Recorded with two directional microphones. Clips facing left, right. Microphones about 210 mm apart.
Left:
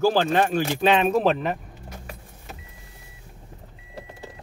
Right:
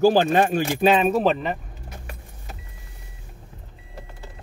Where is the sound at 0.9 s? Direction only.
5° right (ahead or behind).